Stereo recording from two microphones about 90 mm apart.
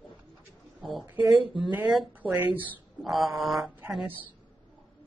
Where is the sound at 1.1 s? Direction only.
20° right (ahead or behind).